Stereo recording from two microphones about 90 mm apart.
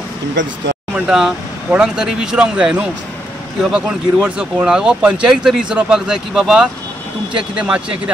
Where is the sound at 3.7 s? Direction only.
10° right (ahead or behind).